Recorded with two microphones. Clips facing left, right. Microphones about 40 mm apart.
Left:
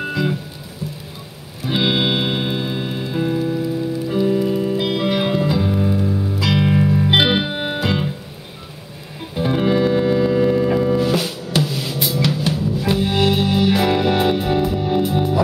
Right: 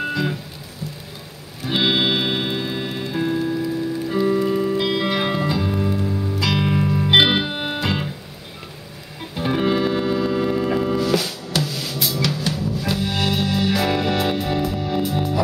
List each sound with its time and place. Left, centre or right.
0.1 s music: centre
1.7 s music: centre
4.3 s music: right
4.7 s music: centre
5.2 s music: centre
5.5 s music: centre
9.4 s music: centre
11.0 s music: centre